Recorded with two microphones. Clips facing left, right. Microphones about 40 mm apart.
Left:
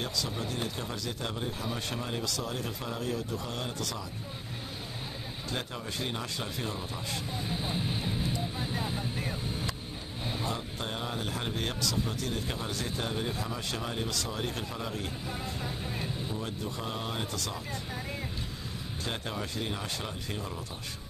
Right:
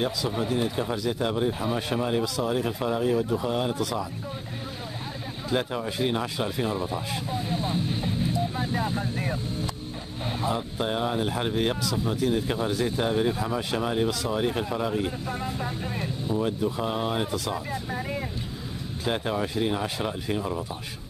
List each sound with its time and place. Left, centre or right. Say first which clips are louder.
0.0 s speech: right 7 dB; centre
5.5 s speech: right 10 dB; centre
7.5 s speech: right 5 dB; centre
7.9 s music: right 5 dB; centre
8.7 s speech: right 6 dB; centre
10.2 s speech: right 7 dB; centre